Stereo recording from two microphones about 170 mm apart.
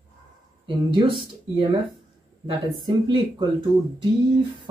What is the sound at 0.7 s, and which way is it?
Speech, 30° right (ahead or behind).